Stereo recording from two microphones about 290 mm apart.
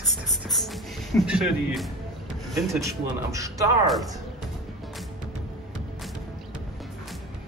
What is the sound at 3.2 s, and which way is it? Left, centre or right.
Speech, centre.